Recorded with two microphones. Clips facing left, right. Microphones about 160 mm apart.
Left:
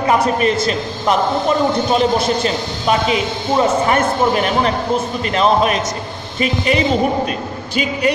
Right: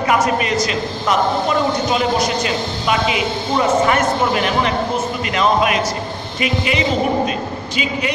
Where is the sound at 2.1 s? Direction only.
30° left (ahead or behind); by 8.1 s 45° left (ahead or behind).